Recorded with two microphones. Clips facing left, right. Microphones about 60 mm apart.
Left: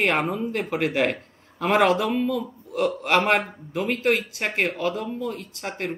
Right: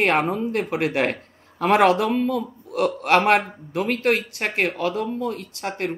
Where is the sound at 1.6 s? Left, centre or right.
Centre.